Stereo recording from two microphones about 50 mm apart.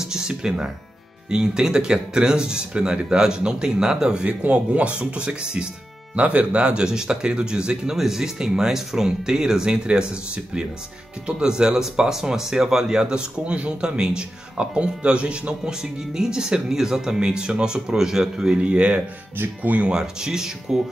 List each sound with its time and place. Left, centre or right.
0.0 s music: centre
1.3 s speech: centre
19.3 s speech: right
19.9 s speech: centre